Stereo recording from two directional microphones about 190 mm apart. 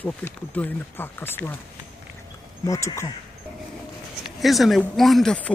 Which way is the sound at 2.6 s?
15° left (ahead or behind).